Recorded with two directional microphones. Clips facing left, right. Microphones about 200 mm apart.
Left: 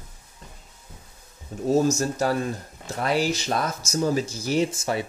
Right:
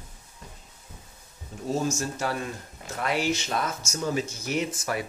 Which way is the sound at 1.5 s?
40° left (ahead or behind).